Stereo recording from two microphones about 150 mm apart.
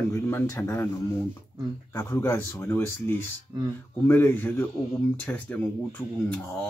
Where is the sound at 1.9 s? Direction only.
15° left (ahead or behind).